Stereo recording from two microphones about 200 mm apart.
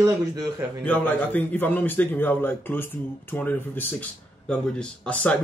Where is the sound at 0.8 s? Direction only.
10° left (ahead or behind).